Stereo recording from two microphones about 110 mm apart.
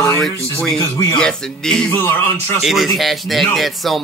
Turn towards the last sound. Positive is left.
turn(degrees=0)  # may be behind; listen again after turning